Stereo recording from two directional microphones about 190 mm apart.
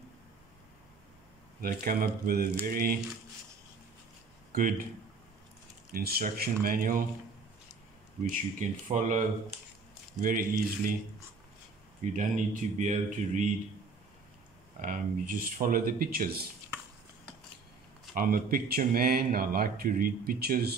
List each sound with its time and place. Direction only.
1.6 s speech: 50° right (ahead or behind)
4.5 s speech: 50° right (ahead or behind)
5.9 s speech: 50° right (ahead or behind)
8.3 s speech: 40° right (ahead or behind)
10.2 s speech: 45° right (ahead or behind)
12.2 s speech: 40° right (ahead or behind)
14.8 s speech: 45° right (ahead or behind)
18.1 s speech: 50° right (ahead or behind)